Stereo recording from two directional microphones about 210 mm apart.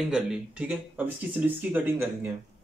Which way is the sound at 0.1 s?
5° right (ahead or behind).